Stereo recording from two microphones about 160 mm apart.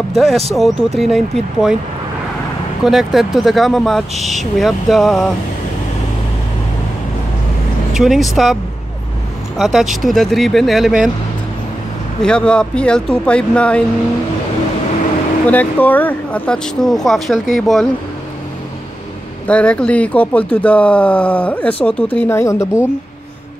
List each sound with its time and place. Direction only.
0.1 s speech: centre (ahead or behind)
2.8 s speech: centre (ahead or behind)
7.9 s speech: centre (ahead or behind)
9.6 s speech: centre (ahead or behind)
12.2 s speech: 5° left (ahead or behind)
15.4 s speech: 10° left (ahead or behind)
19.4 s speech: 5° left (ahead or behind)